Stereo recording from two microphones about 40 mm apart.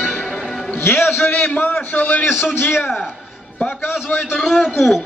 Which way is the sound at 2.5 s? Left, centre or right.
Left.